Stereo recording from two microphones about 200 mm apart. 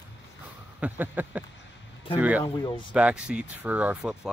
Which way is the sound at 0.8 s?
10° right (ahead or behind).